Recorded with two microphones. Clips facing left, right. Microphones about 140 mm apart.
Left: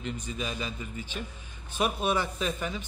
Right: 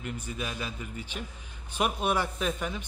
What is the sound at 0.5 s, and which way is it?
Speech, 15° left (ahead or behind).